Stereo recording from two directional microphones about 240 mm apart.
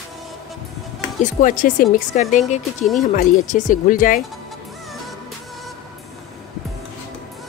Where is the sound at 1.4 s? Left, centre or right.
Left.